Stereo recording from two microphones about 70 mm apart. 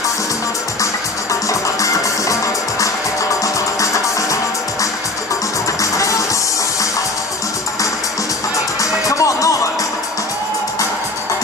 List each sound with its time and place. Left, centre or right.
1.5 s music: left
5.8 s music: left
9.0 s music: left